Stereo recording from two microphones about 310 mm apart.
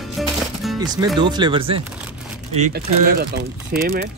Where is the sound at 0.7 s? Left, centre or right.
Centre.